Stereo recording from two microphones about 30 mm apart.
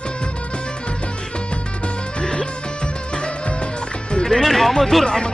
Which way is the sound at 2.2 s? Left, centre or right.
Left.